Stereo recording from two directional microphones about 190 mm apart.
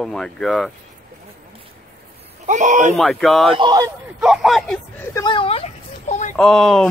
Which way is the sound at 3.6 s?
25° right (ahead or behind).